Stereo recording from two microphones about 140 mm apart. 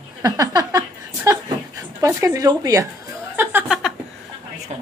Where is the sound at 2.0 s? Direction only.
20° right (ahead or behind).